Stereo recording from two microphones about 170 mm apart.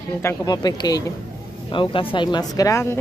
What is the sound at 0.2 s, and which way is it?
Speech, 20° left (ahead or behind).